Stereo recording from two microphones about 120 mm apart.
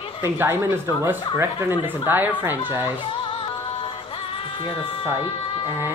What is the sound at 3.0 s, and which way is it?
Music, 45° left (ahead or behind).